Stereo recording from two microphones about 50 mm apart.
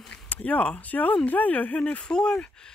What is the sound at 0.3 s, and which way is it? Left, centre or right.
Speech, left.